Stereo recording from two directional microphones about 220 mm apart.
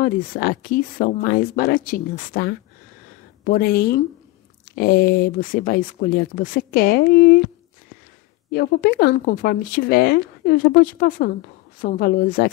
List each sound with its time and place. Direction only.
0.0 s speech: 40° left (ahead or behind)
8.5 s speech: 45° left (ahead or behind)